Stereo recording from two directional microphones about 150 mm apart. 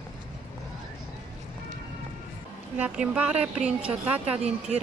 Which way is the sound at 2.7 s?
10° right (ahead or behind).